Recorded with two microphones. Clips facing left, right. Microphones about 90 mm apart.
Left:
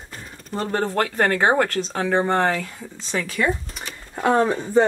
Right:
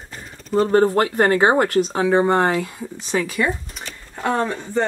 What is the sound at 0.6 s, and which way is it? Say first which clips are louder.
Speech: right 6 dB; 25° right (ahead or behind).